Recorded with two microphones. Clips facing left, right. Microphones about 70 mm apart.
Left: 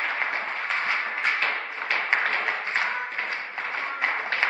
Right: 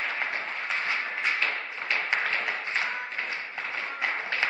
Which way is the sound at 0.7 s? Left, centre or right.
Left.